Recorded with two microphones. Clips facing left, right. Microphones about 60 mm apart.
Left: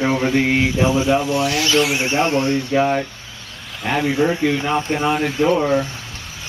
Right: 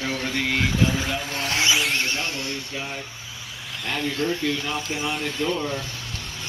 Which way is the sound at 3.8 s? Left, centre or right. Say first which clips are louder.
Left 8 dB; left.